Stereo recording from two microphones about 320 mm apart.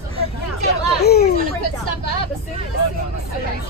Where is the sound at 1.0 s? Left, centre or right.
Left.